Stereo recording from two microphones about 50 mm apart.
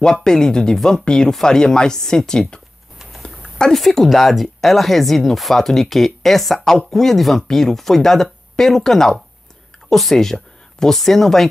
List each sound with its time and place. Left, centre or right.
0.0 s speech: centre
3.2 s typing: left
3.7 s speech: centre